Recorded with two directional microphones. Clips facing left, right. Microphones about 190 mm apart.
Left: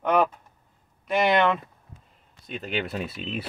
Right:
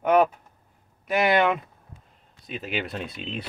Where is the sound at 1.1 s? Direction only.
5° right (ahead or behind).